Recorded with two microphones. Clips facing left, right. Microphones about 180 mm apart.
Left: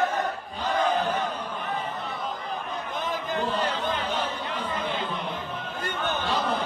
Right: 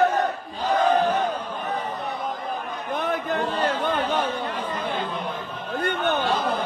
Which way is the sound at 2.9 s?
65° right (ahead or behind).